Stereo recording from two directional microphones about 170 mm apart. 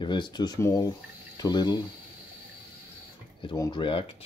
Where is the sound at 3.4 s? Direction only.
25° left (ahead or behind).